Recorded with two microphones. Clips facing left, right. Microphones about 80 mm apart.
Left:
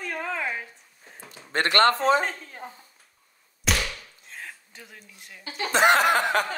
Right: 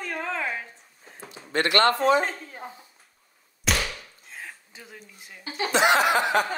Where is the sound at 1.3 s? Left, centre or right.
Left.